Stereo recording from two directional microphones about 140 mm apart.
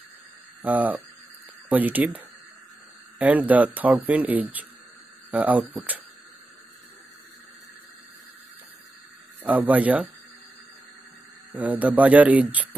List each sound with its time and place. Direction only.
0.7 s speech: 10° right (ahead or behind)
9.4 s speech: 10° right (ahead or behind)
11.5 s speech: 10° right (ahead or behind)